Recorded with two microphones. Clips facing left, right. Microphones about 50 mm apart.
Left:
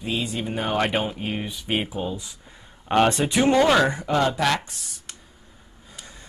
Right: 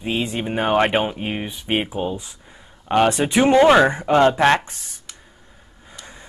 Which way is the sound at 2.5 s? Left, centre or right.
Centre.